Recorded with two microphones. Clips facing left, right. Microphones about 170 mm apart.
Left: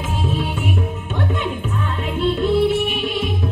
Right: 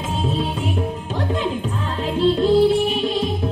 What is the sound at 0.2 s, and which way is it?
Music, 30° right (ahead or behind).